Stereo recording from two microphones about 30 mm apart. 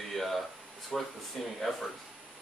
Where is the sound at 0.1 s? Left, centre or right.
Centre.